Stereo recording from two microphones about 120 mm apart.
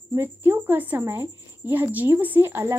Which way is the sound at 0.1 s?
20° right (ahead or behind).